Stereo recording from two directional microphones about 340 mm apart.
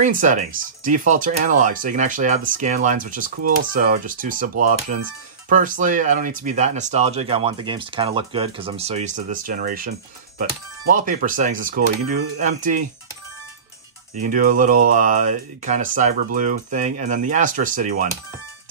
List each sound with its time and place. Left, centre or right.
0.0 s speech: right
14.2 s speech: right